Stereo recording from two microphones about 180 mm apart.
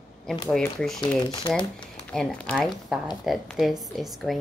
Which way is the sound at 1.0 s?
25° left (ahead or behind).